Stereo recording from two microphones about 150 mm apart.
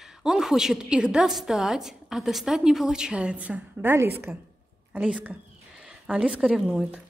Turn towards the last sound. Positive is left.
turn(degrees=-5)  # may be behind; listen again after turning